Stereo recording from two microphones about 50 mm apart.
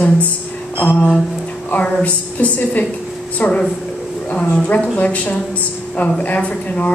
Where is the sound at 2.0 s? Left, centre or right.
Left.